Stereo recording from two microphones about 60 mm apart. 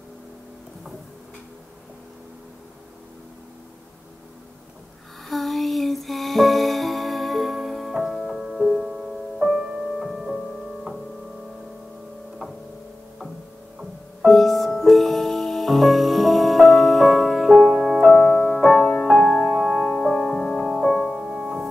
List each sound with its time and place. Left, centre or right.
5.3 s music: centre
14.2 s music: centre